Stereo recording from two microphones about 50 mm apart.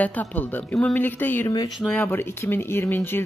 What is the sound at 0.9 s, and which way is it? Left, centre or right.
Speech, left.